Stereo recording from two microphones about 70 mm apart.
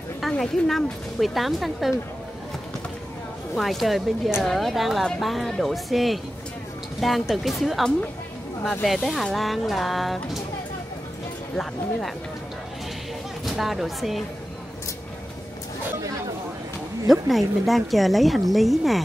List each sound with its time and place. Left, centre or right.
0.4 s speech: centre
3.5 s speech: centre
13.5 s speech: centre
17.1 s speech: centre